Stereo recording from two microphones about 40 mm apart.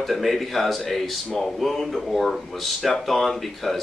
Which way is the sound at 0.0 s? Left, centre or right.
Centre.